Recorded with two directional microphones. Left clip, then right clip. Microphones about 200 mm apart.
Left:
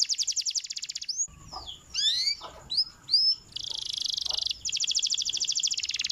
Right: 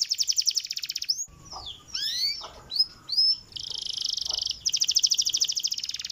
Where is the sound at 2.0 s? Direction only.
25° left (ahead or behind).